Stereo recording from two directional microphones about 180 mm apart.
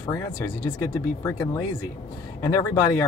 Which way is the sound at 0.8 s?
15° left (ahead or behind).